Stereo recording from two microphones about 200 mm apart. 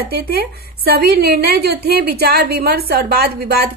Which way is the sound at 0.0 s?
50° right (ahead or behind).